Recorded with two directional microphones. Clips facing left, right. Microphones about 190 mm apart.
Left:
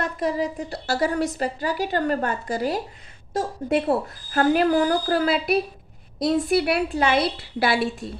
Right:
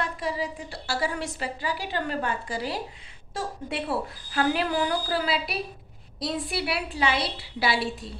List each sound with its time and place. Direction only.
0.0 s a woman's voice: 45° left (ahead or behind)